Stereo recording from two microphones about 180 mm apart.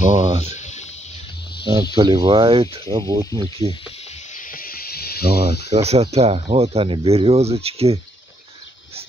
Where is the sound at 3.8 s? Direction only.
40° left (ahead or behind); by 5.7 s 60° left (ahead or behind).